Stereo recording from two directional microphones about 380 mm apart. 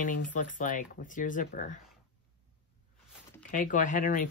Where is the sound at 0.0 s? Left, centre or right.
Left.